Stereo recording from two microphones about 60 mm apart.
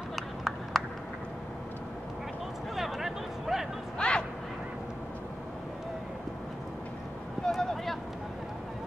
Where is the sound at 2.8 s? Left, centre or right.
Centre.